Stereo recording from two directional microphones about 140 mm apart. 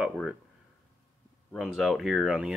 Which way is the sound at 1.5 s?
Centre (ahead or behind).